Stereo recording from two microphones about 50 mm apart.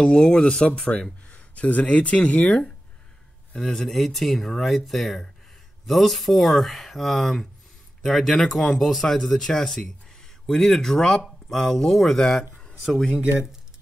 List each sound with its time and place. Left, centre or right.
0.0 s speech: centre
1.3 s speech: left
3.5 s speech: centre